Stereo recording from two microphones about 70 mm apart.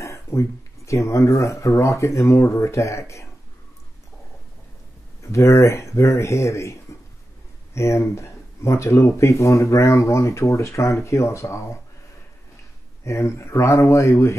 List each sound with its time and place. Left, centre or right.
0.0 s speech: left
5.2 s speech: left
13.0 s speech: left